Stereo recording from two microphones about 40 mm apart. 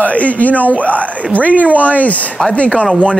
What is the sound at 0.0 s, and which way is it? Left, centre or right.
Speech, left.